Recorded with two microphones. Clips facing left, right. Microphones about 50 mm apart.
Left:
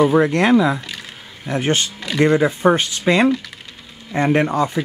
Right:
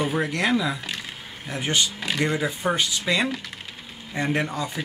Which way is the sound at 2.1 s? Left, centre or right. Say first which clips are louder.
Left 11 dB; left.